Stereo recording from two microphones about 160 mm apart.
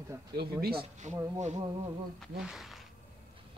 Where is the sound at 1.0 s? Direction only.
50° right (ahead or behind).